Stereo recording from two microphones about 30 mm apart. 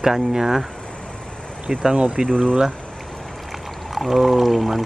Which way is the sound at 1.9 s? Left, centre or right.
Right.